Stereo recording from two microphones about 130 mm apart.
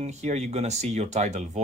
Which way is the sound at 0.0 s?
60° right (ahead or behind).